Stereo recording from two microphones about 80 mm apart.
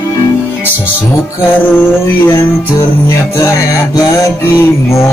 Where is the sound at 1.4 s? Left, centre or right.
Left.